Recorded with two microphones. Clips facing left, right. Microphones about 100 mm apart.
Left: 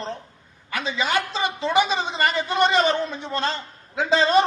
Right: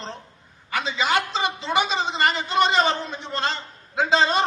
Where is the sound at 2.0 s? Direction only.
30° right (ahead or behind).